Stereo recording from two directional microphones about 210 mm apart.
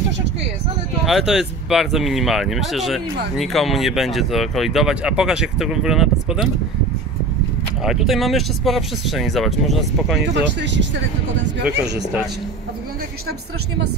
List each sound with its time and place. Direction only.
1.0 s speech: centre (ahead or behind)
7.8 s speech: centre (ahead or behind)
10.2 s speech: 55° right (ahead or behind)